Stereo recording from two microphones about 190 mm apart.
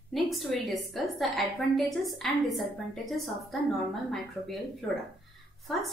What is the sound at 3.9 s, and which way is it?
Speech, centre (ahead or behind).